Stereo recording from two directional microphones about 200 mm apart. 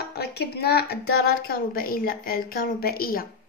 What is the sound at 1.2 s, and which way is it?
A woman's voice, 50° left (ahead or behind).